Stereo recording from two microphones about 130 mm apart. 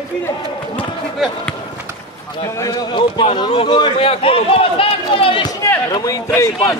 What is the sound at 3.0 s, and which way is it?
A man's voice, 40° left (ahead or behind).